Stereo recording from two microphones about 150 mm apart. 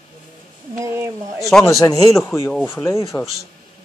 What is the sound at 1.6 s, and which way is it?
Speech, 20° left (ahead or behind).